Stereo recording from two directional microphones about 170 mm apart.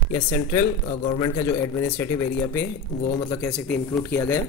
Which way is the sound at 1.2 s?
20° left (ahead or behind).